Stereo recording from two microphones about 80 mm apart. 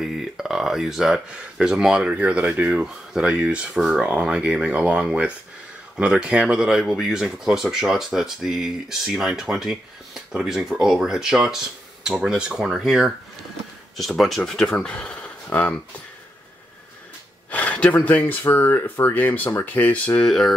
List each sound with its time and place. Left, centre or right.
0.0 s speech: centre
17.5 s a sound: centre
18.4 s speech: left
20.2 s speech: centre